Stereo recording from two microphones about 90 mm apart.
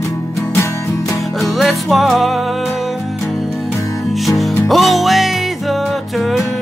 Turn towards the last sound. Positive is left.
turn(degrees=0)  # may be behind; listen again after turning